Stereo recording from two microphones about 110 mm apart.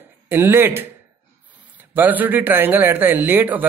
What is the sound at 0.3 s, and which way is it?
Speech, 20° right (ahead or behind).